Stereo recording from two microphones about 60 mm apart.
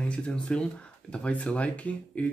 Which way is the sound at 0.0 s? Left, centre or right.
Centre.